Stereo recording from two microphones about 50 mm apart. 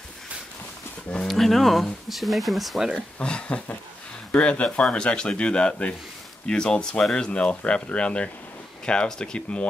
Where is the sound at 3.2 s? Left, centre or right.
Left.